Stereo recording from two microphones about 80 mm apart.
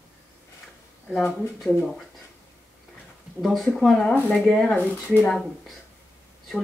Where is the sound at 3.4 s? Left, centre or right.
Centre.